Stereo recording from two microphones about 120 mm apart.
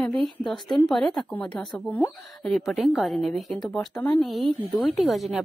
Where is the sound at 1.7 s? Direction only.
15° left (ahead or behind).